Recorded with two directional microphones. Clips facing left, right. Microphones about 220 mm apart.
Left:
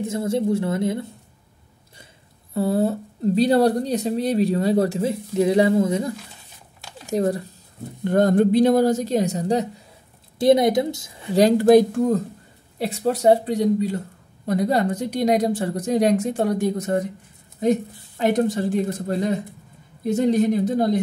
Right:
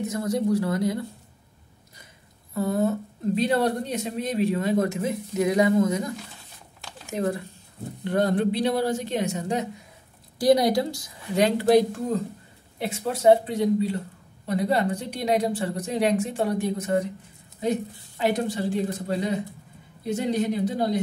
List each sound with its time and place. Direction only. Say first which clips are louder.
0.0 s speech: left 3 dB; 25° left (ahead or behind)
2.5 s speech: left 3 dB; 30° left (ahead or behind)
10.4 s speech: left 3 dB; 25° left (ahead or behind)
11.3 s speech: left 5 dB; 40° left (ahead or behind)
12.7 s speech: left 6 dB; 35° left (ahead or behind)